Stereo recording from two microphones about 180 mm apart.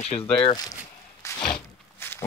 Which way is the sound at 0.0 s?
35° left (ahead or behind).